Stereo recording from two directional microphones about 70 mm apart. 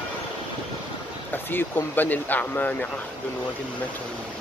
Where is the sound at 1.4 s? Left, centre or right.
Left.